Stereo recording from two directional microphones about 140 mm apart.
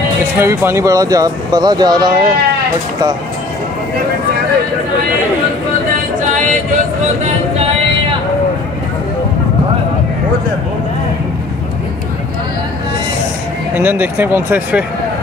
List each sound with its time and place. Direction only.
0.4 s speech: 20° right (ahead or behind)
6.1 s a capella: 65° right (ahead or behind)
7.2 s music: 50° right (ahead or behind)
13.7 s speech: 15° right (ahead or behind)